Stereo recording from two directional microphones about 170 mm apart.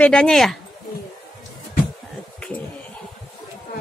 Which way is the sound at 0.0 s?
5° left (ahead or behind).